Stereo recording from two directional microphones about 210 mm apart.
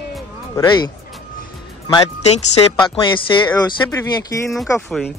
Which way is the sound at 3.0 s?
20° left (ahead or behind).